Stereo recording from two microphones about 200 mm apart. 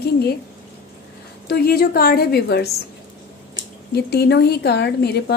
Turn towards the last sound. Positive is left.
turn(degrees=55)  # may be behind; listen again after turning